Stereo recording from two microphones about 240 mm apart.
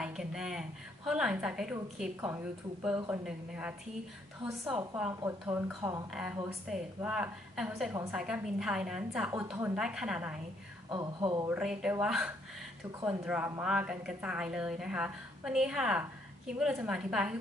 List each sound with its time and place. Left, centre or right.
0.0 s a woman's voice: centre
10.9 s speech: centre
11.5 s a woman's voice: centre